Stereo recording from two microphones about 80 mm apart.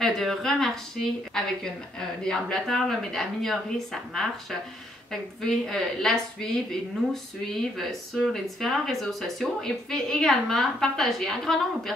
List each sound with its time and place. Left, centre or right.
0.0 s a woman's voice: centre
7.6 s speech: centre